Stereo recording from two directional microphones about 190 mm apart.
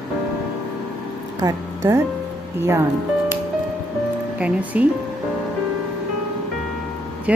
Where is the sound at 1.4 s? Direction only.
20° right (ahead or behind).